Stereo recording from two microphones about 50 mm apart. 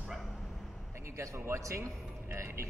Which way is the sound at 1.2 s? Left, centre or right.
Right.